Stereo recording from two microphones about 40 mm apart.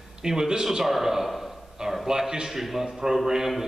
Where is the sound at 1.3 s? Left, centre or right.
Centre.